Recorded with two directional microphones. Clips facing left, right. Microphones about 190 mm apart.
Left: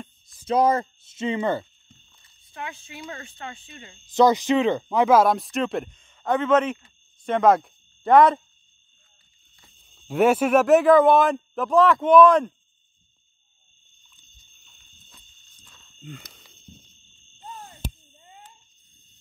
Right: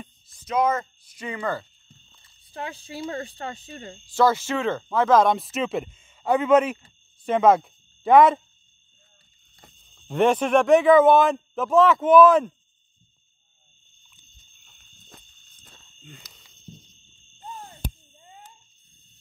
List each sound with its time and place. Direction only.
0.5 s speech: 30° left (ahead or behind)
2.5 s speech: 35° right (ahead or behind)
4.0 s speech: 20° left (ahead or behind); by 8.4 s centre (ahead or behind)
10.0 s speech: 5° left (ahead or behind)
16.1 s speech: 55° left (ahead or behind)